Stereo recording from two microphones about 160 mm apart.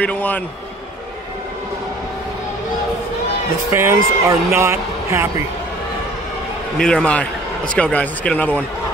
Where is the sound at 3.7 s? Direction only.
20° right (ahead or behind).